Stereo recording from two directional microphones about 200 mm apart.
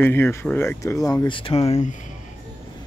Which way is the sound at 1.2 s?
25° left (ahead or behind).